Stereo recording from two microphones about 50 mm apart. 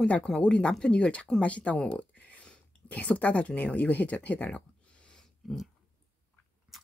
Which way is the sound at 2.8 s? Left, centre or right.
Left.